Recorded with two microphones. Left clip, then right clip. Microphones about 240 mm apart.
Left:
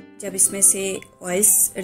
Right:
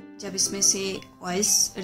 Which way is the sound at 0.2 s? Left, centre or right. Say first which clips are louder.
Left 1 dB; centre.